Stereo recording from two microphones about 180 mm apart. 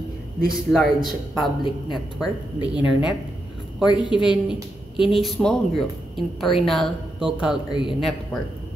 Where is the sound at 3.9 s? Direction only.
25° left (ahead or behind).